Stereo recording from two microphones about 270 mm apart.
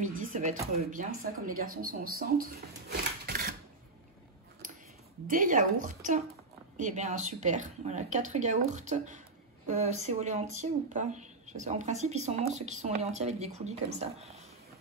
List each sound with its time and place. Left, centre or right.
0.0 s speech: right
5.2 s speech: right